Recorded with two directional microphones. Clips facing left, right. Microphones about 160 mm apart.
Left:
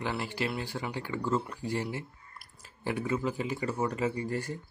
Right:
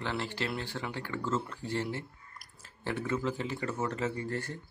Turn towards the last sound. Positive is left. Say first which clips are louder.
# left 3 dB
turn(degrees=10)  # may be behind; listen again after turning